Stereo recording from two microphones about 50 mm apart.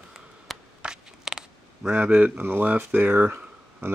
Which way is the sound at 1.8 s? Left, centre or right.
Right.